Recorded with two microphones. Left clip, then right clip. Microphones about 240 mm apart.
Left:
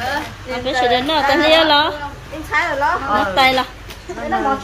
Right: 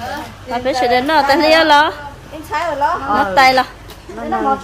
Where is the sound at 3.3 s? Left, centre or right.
Centre.